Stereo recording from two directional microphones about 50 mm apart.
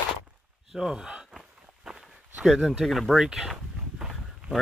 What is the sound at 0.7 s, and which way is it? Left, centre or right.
Speech, centre.